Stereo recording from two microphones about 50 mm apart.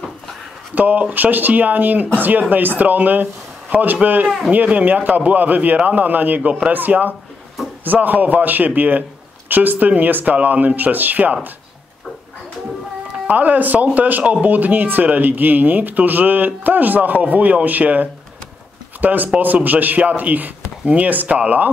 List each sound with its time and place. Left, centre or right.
0.7 s speech: right
13.3 s speech: right